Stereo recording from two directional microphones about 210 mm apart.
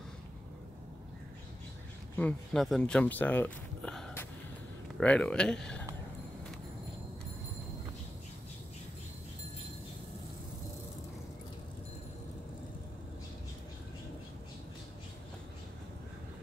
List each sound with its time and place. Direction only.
2.1 s speech: 5° left (ahead or behind)